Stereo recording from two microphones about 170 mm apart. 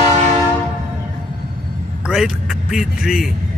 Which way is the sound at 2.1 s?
5° right (ahead or behind).